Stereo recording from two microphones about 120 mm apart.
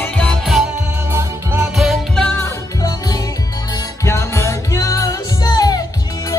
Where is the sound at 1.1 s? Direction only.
15° right (ahead or behind).